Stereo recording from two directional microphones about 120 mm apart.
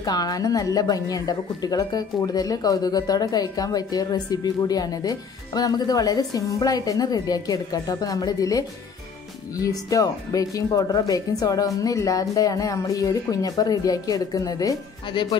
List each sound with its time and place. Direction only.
0.0 s speech: 35° left (ahead or behind)